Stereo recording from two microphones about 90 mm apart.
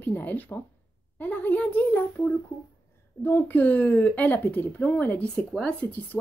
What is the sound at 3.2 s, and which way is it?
A woman's voice, 20° left (ahead or behind).